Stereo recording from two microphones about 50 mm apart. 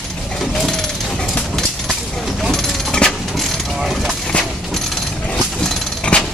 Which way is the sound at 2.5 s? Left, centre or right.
Centre.